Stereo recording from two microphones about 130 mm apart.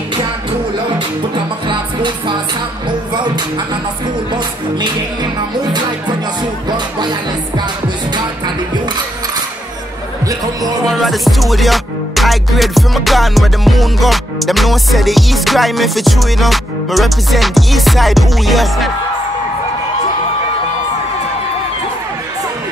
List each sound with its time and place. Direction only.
0.9 s music: 40° right (ahead or behind)
4.3 s speech: 35° right (ahead or behind)
10.2 s a man's voice: 30° right (ahead or behind)
10.9 s music: centre (ahead or behind)